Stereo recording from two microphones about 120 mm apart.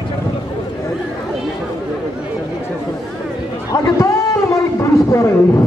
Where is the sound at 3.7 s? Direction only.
30° left (ahead or behind).